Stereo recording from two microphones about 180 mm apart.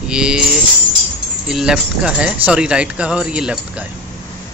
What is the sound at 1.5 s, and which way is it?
Speech, 5° right (ahead or behind).